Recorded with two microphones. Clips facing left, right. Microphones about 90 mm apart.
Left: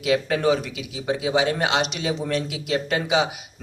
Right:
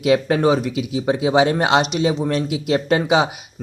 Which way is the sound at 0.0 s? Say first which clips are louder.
Right 5 dB; 35° right (ahead or behind).